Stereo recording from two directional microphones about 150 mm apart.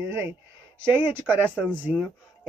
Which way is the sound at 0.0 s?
15° right (ahead or behind).